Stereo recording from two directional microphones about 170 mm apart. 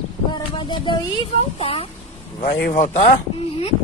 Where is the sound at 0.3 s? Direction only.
30° left (ahead or behind).